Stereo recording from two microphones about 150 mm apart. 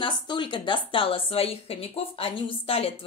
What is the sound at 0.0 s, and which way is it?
A woman's voice, 30° left (ahead or behind).